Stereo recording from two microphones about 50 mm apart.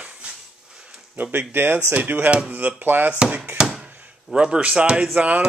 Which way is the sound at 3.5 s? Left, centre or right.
Centre.